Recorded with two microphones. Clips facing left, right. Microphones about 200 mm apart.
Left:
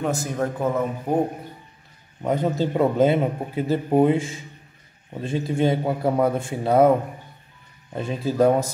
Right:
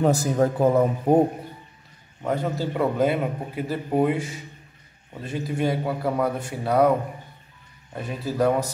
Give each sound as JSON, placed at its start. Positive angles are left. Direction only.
{"t": 0.0, "sound": "speech", "side_deg": -35}
{"t": 2.2, "sound": "a man's voice", "side_deg": 20}
{"t": 7.9, "sound": "a man's voice", "side_deg": 25}